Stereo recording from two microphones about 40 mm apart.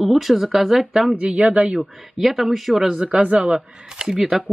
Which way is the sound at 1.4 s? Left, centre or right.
Right.